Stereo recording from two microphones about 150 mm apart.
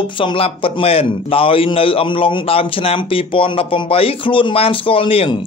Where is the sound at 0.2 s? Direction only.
35° left (ahead or behind).